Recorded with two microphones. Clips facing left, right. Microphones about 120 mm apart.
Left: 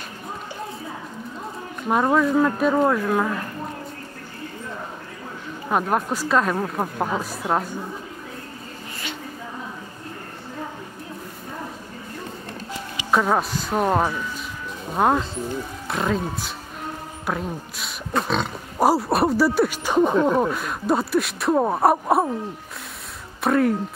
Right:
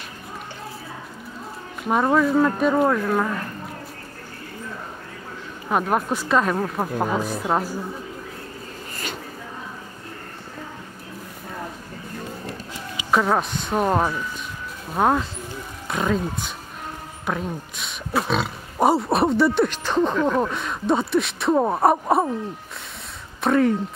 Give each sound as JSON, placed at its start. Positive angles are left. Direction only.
{"t": 1.9, "sound": "speech", "side_deg": 0}
{"t": 5.7, "sound": "speech", "side_deg": 0}
{"t": 13.1, "sound": "speech", "side_deg": 0}
{"t": 23.4, "sound": "speech", "side_deg": 0}